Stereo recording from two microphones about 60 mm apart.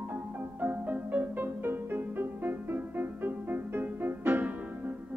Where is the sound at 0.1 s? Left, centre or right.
Right.